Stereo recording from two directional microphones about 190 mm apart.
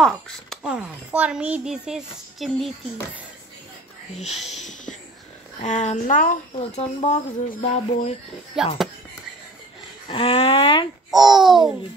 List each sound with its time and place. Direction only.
0.0 s a child's voice: centre (ahead or behind)
5.6 s speech: 40° left (ahead or behind)
6.8 s speech: 30° left (ahead or behind)
8.6 s a child's voice: centre (ahead or behind)
10.0 s speech: 30° left (ahead or behind)
11.1 s a child's voice: centre (ahead or behind)